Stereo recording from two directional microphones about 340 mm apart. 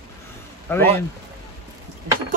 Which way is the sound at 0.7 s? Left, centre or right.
Centre.